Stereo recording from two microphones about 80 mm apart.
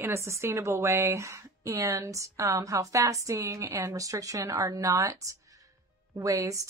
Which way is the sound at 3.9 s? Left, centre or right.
Right.